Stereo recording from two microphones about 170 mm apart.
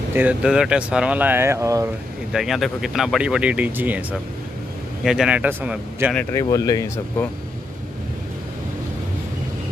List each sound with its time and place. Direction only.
0.1 s speech: 10° right (ahead or behind)
2.3 s speech: centre (ahead or behind)
5.0 s speech: 5° right (ahead or behind)
6.1 s speech: 20° left (ahead or behind)